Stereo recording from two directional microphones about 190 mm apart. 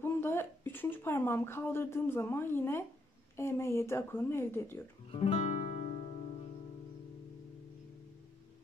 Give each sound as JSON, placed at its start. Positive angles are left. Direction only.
{"t": 0.0, "sound": "speech", "side_deg": 10}
{"t": 5.1, "sound": "music", "side_deg": 30}